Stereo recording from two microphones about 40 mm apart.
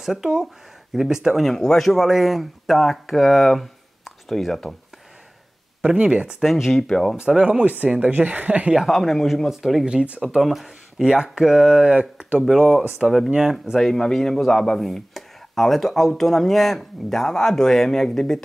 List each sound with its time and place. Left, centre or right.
0.0 s speech: centre
1.4 s a man's voice: centre
5.8 s speech: right
6.4 s a man's voice: centre
6.8 s speech: centre
7.2 s speech: right
8.8 s a man's voice: centre; by 12.4 s right
12.4 s a man's voice: centre
13.3 s speech: centre
13.7 s speech: centre